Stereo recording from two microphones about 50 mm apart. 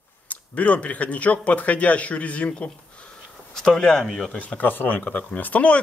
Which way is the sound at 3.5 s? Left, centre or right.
Centre.